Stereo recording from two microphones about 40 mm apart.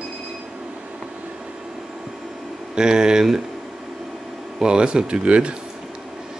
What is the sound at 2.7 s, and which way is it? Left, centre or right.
Speech, centre.